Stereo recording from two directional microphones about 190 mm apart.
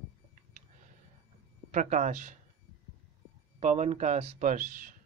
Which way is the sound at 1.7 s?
40° right (ahead or behind).